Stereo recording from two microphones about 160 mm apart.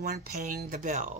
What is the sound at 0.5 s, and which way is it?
Speech, 55° right (ahead or behind).